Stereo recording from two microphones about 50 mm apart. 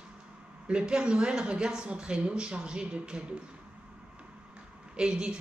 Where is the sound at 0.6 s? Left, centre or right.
Centre.